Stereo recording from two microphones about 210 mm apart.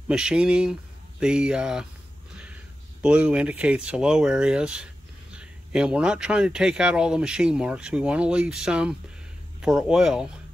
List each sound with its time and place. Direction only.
0.1 s speech: 5° right (ahead or behind)